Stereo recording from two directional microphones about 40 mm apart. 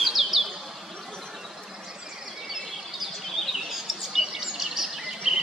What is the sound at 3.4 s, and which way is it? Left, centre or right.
Bird vocalization, centre.